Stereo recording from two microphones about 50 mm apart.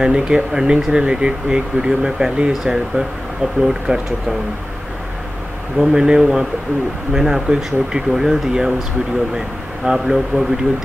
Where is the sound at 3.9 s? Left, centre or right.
Right.